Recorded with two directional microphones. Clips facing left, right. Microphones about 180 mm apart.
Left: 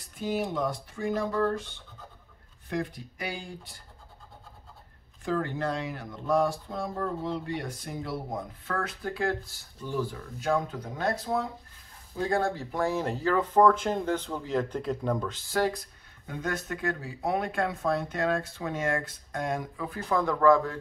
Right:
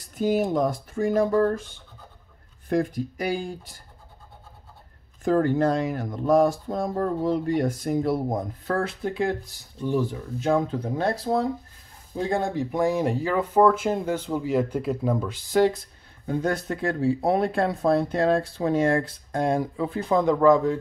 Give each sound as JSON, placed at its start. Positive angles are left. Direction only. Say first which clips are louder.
{"t": 0.2, "sound": "speech", "louder": "right 7 dB", "side_deg": -40}
{"t": 2.7, "sound": "speech", "louder": "right 8 dB", "side_deg": -45}
{"t": 5.2, "sound": "speech", "louder": "right 9 dB", "side_deg": -45}
{"t": 12.2, "sound": "speech", "louder": "right 3 dB", "side_deg": -20}
{"t": 16.3, "sound": "speech", "louder": "right 7 dB", "side_deg": -30}